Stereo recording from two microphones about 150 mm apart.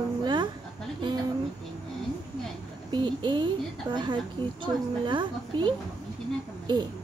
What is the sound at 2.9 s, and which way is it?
Speech, 30° right (ahead or behind).